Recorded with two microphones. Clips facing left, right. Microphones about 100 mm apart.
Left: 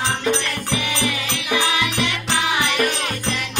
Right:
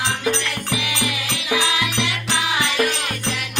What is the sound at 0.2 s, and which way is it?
Music, 15° right (ahead or behind).